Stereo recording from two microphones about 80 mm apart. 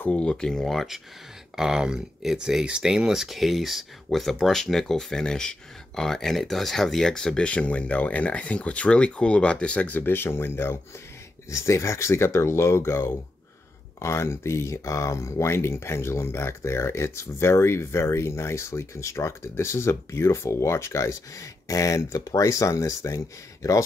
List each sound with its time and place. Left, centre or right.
0.0 s speech: centre; by 23.8 s left